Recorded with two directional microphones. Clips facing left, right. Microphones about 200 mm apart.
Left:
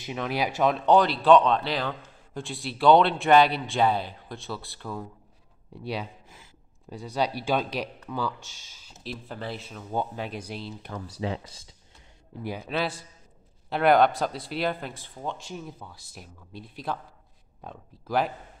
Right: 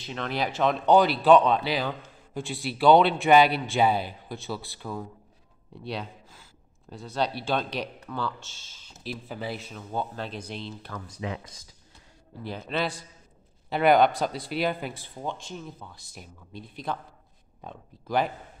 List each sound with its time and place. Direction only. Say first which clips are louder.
0.0 s speech: left 1 dB; 10° left (ahead or behind)
6.2 s a sound: left 1 dB; 20° left (ahead or behind)
6.9 s speech: left 1 dB; 10° left (ahead or behind)
9.0 s speech: right 1 dB; 5° right (ahead or behind)
9.8 s speech: left 2 dB; 10° left (ahead or behind)
11.0 s speech: left 3 dB; 30° left (ahead or behind)
12.4 s speech: even; 10° left (ahead or behind)
15.3 s speech: left 1 dB; 5° left (ahead or behind)